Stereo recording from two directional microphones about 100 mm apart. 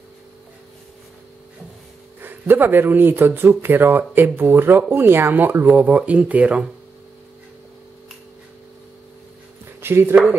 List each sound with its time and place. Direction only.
2.2 s speech: 20° right (ahead or behind)
9.8 s speech: 25° right (ahead or behind)